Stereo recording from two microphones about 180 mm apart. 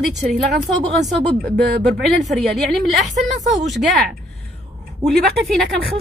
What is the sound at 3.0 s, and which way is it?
Speech, 40° right (ahead or behind).